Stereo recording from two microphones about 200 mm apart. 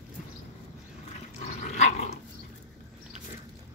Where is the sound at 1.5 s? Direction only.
35° left (ahead or behind).